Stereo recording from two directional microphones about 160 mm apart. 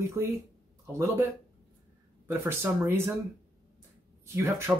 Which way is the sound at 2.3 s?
15° right (ahead or behind).